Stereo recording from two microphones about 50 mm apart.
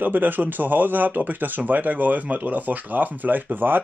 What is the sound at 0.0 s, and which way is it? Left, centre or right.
Speech, right.